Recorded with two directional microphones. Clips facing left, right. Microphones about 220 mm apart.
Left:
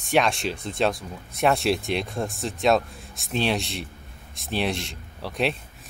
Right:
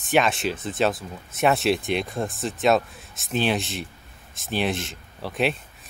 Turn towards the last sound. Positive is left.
turn(degrees=0)  # may be behind; listen again after turning